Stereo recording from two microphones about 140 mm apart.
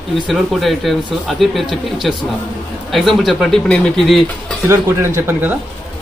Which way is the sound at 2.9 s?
Centre (ahead or behind).